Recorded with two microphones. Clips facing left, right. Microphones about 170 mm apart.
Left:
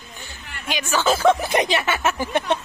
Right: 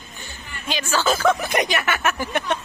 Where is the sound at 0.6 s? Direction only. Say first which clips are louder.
Left 1 dB; 15° left (ahead or behind).